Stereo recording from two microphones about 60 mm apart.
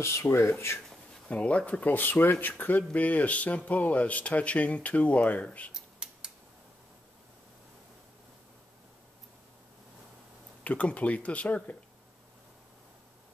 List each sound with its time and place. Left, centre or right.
0.0 s speech: left
0.8 s speech: centre
5.7 s a sound: centre
10.6 s speech: left